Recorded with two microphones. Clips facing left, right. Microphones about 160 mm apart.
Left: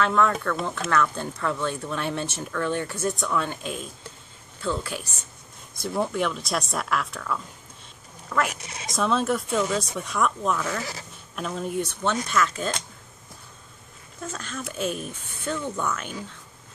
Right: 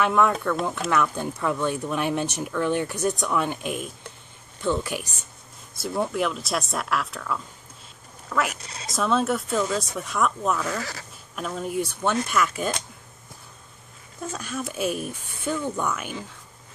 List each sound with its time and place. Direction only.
0.0 s speech: 15° right (ahead or behind)
5.8 s speech: centre (ahead or behind)
8.5 s speech: 20° left (ahead or behind)
8.9 s speech: centre (ahead or behind)
14.2 s speech: 5° right (ahead or behind)